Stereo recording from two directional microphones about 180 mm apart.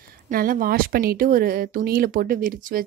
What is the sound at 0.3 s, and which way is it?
Speech, 50° right (ahead or behind).